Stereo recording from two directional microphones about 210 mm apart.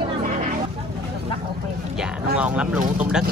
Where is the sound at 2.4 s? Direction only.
5° right (ahead or behind).